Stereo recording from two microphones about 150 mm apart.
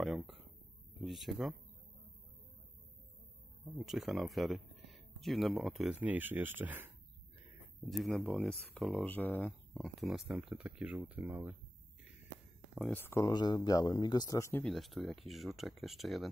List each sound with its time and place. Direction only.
0.0 s a sound: centre (ahead or behind)
1.0 s speech: centre (ahead or behind)
3.7 s speech: 5° right (ahead or behind)
5.9 s speech: 10° right (ahead or behind)
7.9 s speech: centre (ahead or behind)
9.9 s speech: centre (ahead or behind)
12.8 s speech: 15° left (ahead or behind)
14.6 s speech: centre (ahead or behind)